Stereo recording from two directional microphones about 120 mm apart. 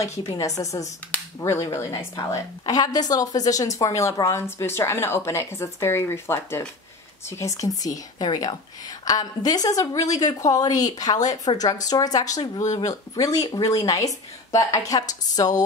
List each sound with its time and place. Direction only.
0.2 s a woman's voice: 30° left (ahead or behind)